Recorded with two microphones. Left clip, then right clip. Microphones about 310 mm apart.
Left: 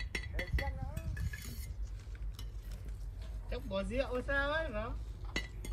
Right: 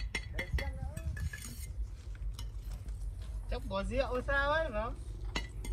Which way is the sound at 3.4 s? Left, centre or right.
Centre.